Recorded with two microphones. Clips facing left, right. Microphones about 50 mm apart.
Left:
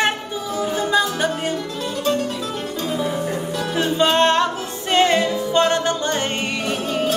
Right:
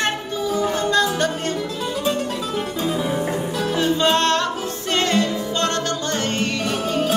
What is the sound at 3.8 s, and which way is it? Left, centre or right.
Music, centre.